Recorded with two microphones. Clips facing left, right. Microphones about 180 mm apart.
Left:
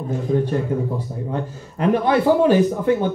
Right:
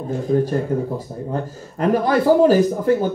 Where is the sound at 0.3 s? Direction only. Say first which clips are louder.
Right 2 dB; 40° right (ahead or behind).